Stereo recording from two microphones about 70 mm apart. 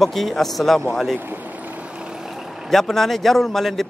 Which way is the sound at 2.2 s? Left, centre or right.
Centre.